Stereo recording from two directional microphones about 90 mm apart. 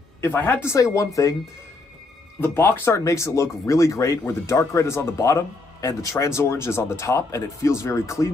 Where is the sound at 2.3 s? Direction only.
30° left (ahead or behind).